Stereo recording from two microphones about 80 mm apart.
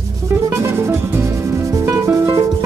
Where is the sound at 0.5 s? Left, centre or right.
Right.